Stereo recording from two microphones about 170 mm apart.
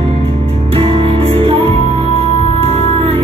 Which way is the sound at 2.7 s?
40° right (ahead or behind).